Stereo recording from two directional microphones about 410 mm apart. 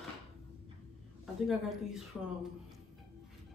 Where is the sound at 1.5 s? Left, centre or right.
Centre.